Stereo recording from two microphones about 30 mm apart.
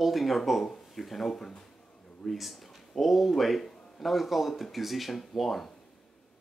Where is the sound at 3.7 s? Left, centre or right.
Left.